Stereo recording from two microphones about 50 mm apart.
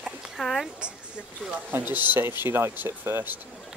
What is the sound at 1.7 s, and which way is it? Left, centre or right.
Speech, right.